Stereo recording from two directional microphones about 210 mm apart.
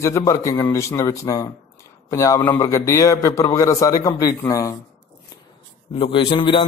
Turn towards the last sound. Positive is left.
turn(degrees=25)  # may be behind; listen again after turning